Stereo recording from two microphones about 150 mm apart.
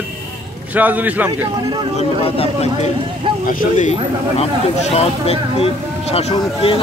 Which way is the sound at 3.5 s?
60° left (ahead or behind).